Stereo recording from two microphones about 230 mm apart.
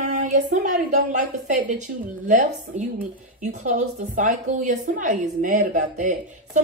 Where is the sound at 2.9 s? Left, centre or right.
Right.